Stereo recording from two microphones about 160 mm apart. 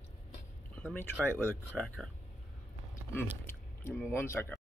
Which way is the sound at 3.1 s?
15° left (ahead or behind).